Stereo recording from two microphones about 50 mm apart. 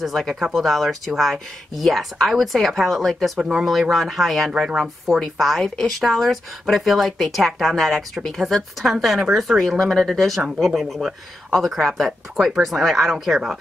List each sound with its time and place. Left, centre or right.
0.0 s speech: centre
3.3 s a woman's voice: centre
3.9 s speech: centre
4.5 s a woman's voice: centre
4.7 s speech: centre